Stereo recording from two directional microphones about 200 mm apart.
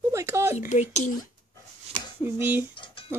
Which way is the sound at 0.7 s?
35° left (ahead or behind).